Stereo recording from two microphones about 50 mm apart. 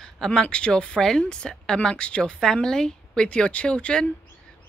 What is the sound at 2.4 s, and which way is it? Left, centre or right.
Speech, centre.